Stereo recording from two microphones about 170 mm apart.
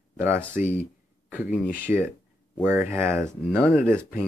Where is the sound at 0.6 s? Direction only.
55° left (ahead or behind).